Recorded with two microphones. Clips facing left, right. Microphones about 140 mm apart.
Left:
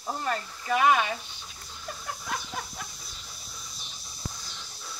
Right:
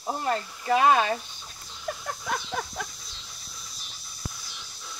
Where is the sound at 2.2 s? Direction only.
60° right (ahead or behind).